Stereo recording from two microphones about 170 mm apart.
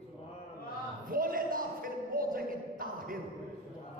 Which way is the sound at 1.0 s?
55° right (ahead or behind).